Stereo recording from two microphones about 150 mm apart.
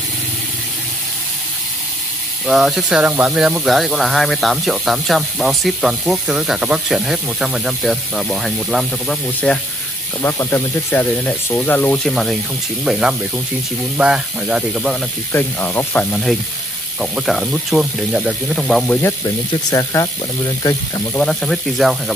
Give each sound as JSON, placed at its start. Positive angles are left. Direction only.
{"t": 2.4, "sound": "speech", "side_deg": 0}
{"t": 10.2, "sound": "speech", "side_deg": 15}
{"t": 15.3, "sound": "speech", "side_deg": 15}
{"t": 19.2, "sound": "speech", "side_deg": 25}
{"t": 21.2, "sound": "speech", "side_deg": 5}